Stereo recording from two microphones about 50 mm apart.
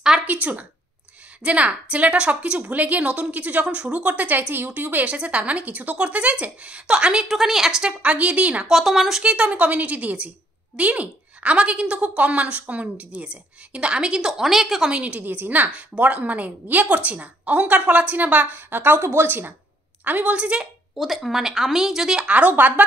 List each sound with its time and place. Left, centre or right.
0.3 s a woman's voice: right
5.1 s a woman's voice: right
7.2 s a woman's voice: centre
8.0 s a woman's voice: right
8.6 s a woman's voice: centre
9.2 s a woman's voice: right
14.9 s a woman's voice: right
15.2 s a woman's voice: right
15.7 s a woman's voice: right
18.9 s a woman's voice: right
20.3 s a woman's voice: right
21.0 s a woman's voice: centre
22.4 s a woman's voice: right